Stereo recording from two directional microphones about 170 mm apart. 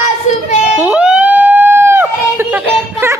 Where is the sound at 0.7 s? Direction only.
5° right (ahead or behind).